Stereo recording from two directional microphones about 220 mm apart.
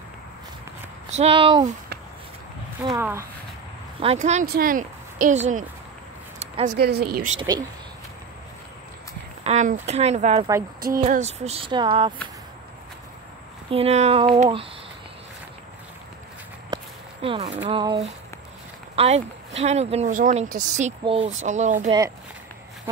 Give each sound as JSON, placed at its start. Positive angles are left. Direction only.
{"t": 1.1, "sound": "speech", "side_deg": -25}
{"t": 2.9, "sound": "speech", "side_deg": -10}
{"t": 4.0, "sound": "speech", "side_deg": -30}
{"t": 6.7, "sound": "speech", "side_deg": -45}
{"t": 7.5, "sound": "speech", "side_deg": -15}
{"t": 9.4, "sound": "speech", "side_deg": -30}
{"t": 13.7, "sound": "speech", "side_deg": -30}
{"t": 16.7, "sound": "a sound", "side_deg": -25}
{"t": 17.6, "sound": "speech", "side_deg": -25}
{"t": 21.0, "sound": "speech", "side_deg": -20}
{"t": 21.4, "sound": "speech", "side_deg": -35}